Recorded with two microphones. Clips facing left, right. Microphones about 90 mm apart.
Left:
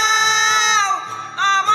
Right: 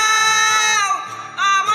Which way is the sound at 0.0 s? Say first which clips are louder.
Even; 20° left (ahead or behind).